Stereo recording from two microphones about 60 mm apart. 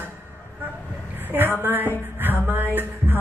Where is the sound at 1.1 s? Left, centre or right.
Right.